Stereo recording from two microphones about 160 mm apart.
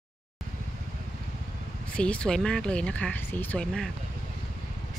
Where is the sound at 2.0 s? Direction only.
5° left (ahead or behind).